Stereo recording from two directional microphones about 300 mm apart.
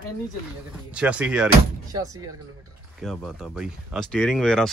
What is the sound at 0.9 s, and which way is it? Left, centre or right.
Speech, centre.